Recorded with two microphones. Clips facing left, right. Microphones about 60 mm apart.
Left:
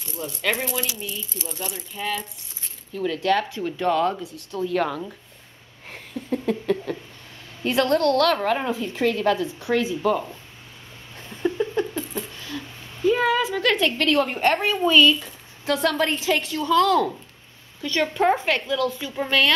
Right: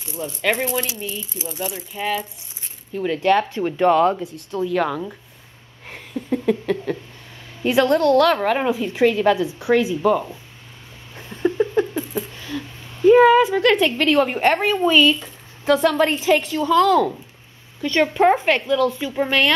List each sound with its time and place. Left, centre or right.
0.0 s speech: centre
2.9 s speech: right
4.6 s speech: centre
5.9 s a sound: centre
7.6 s speech: centre
11.1 s rodents: centre
13.4 s speech: right
13.7 s speech: centre
18.9 s speech: centre